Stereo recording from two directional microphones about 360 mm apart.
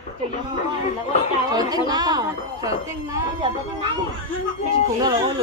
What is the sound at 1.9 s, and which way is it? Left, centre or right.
Speech, centre.